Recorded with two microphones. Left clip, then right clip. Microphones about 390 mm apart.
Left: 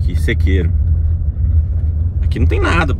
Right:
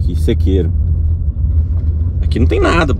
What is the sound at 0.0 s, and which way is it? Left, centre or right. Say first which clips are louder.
Speech: right 2 dB; centre.